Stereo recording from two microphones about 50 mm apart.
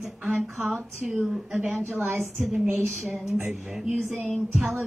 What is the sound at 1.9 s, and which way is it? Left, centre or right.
A woman's voice, right.